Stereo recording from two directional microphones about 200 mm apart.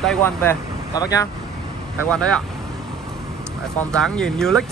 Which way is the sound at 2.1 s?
5° left (ahead or behind).